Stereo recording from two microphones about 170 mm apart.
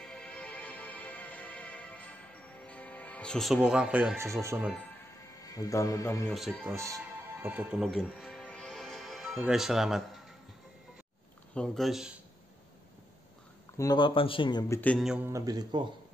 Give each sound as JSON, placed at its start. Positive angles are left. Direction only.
{"t": 0.0, "sound": "music", "side_deg": 5}
{"t": 2.6, "sound": "speech", "side_deg": 5}
{"t": 4.3, "sound": "speech", "side_deg": -15}
{"t": 5.4, "sound": "a man's voice", "side_deg": 20}
{"t": 6.2, "sound": "speech", "side_deg": 0}
{"t": 6.6, "sound": "speech", "side_deg": -15}
{"t": 11.5, "sound": "speech", "side_deg": 5}
{"t": 13.7, "sound": "speech", "side_deg": 25}
{"t": 14.8, "sound": "a sound", "side_deg": 10}
{"t": 15.0, "sound": "a man's voice", "side_deg": -10}